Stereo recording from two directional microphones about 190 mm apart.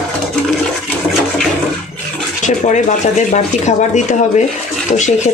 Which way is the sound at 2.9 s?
40° left (ahead or behind).